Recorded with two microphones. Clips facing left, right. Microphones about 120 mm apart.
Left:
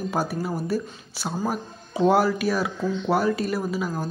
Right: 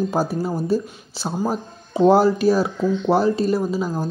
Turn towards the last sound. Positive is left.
turn(degrees=-30)  # may be behind; listen again after turning